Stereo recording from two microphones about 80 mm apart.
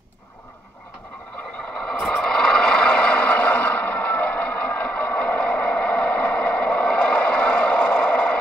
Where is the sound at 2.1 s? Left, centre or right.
Centre.